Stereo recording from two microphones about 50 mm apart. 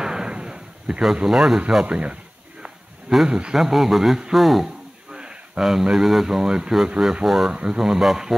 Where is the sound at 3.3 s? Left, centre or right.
Centre.